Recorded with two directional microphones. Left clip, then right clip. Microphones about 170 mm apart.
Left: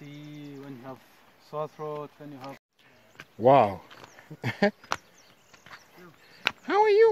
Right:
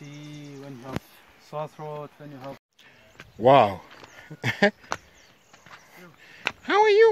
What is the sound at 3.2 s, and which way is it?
Speech, 5° left (ahead or behind).